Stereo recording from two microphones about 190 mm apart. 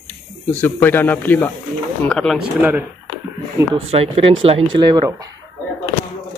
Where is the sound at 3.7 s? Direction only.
30° right (ahead or behind).